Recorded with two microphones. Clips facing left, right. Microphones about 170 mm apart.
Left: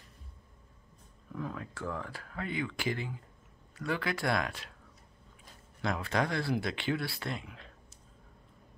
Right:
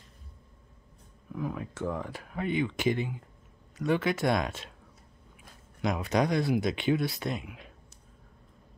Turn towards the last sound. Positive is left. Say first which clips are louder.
# right 5 dB
turn(degrees=-15)  # may be behind; listen again after turning